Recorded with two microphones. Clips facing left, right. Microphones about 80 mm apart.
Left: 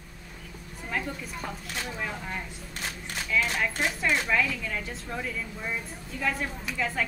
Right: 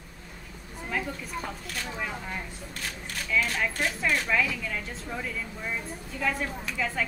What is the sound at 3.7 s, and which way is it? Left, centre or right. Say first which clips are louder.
Speech: left 1 dB; centre.